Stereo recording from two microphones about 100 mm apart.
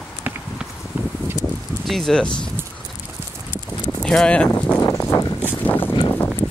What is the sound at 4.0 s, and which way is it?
Speech, 5° left (ahead or behind).